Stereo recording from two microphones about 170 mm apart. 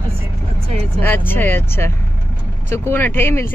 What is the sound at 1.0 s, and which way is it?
Speech, 10° left (ahead or behind).